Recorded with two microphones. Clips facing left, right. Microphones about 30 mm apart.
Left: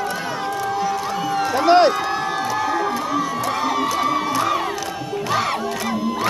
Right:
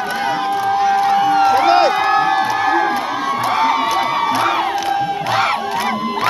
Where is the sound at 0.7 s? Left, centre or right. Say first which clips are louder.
Right 12 dB; right.